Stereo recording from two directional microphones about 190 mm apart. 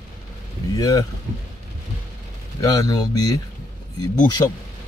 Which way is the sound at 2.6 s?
20° left (ahead or behind).